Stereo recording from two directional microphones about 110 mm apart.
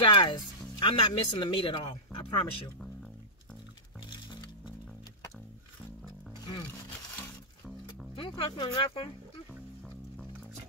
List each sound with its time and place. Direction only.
0.0 s speech: 45° left (ahead or behind)
8.2 s speech: 50° left (ahead or behind)